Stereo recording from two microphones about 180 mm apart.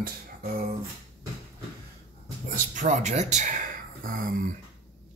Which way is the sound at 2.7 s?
40° right (ahead or behind).